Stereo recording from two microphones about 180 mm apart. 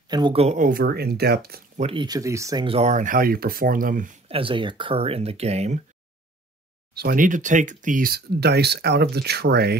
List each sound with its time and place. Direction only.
0.1 s speech: 30° right (ahead or behind); by 1.6 s 60° right (ahead or behind)
1.8 s speech: 30° right (ahead or behind)
2.6 s speech: 35° right (ahead or behind); by 4.1 s 50° right (ahead or behind)
4.3 s speech: 30° right (ahead or behind)
6.9 s speech: 60° right (ahead or behind)